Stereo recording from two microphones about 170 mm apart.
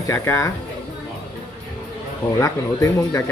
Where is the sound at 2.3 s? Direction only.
20° left (ahead or behind).